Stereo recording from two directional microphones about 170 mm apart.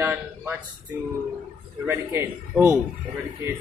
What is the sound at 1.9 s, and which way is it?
Speech, 15° right (ahead or behind).